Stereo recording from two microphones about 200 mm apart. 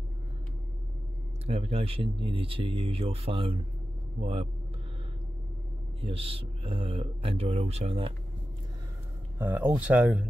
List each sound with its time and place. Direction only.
1.5 s speech: 30° right (ahead or behind)
5.9 s speech: 30° right (ahead or behind)
9.4 s speech: 10° right (ahead or behind)